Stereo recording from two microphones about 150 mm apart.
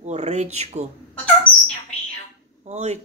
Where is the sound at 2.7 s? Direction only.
50° right (ahead or behind).